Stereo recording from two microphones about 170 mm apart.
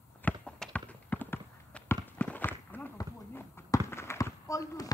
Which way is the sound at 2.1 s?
10° left (ahead or behind).